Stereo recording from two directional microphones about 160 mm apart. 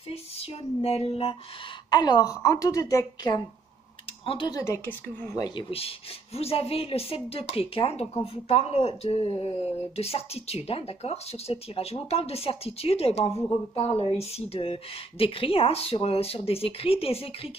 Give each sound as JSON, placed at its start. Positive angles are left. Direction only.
{"t": 0.1, "sound": "speech", "side_deg": 40}
{"t": 1.9, "sound": "a woman's voice", "side_deg": 25}
{"t": 5.4, "sound": "speech", "side_deg": 30}